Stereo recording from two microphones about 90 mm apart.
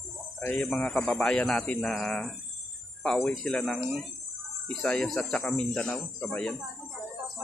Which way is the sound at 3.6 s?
Centre (ahead or behind).